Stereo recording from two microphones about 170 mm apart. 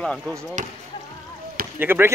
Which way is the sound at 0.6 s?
45° right (ahead or behind).